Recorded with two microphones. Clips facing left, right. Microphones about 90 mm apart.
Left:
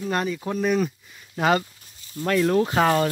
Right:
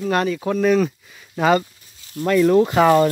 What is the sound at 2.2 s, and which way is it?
Speech, 65° right (ahead or behind).